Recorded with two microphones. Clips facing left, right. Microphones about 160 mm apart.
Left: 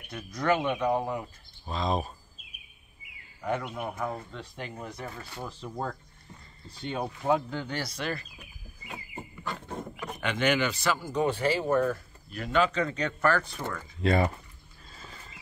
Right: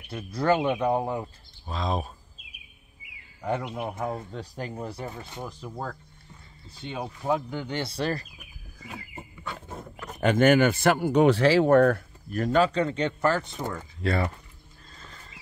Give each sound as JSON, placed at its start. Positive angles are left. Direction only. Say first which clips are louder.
{"t": 0.1, "sound": "speech", "louder": "right 3 dB", "side_deg": -30}
{"t": 1.7, "sound": "speech", "louder": "even", "side_deg": 0}
{"t": 3.7, "sound": "speech", "louder": "right 2 dB", "side_deg": -25}
{"t": 4.3, "sound": "speech", "louder": "right 4 dB", "side_deg": -40}
{"t": 5.1, "sound": "speech", "louder": "right 2 dB", "side_deg": -20}
{"t": 6.8, "sound": "speech", "louder": "left 1 dB", "side_deg": 0}
{"t": 7.4, "sound": "speech", "louder": "right 3 dB", "side_deg": -15}
{"t": 8.9, "sound": "a sound", "louder": "left 1 dB", "side_deg": 0}
{"t": 10.2, "sound": "speech", "louder": "right 8 dB", "side_deg": -45}
{"t": 12.3, "sound": "speech", "louder": "right 4 dB", "side_deg": -45}
{"t": 14.0, "sound": "speech", "louder": "left 2 dB", "side_deg": 15}
{"t": 14.9, "sound": "horse", "louder": "left 1 dB", "side_deg": 5}